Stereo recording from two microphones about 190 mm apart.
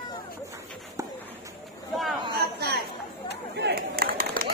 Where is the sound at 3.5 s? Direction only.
55° right (ahead or behind).